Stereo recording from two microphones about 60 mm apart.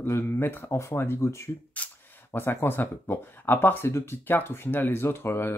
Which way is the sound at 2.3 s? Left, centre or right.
Left.